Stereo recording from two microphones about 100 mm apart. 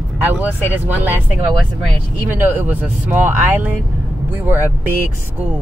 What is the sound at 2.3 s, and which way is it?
Speech, 20° right (ahead or behind).